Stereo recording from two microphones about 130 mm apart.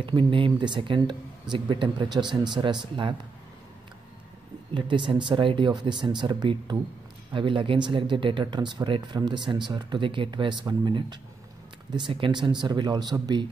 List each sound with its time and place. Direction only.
0.0 s speech: 40° right (ahead or behind)
4.7 s speech: 40° right (ahead or behind)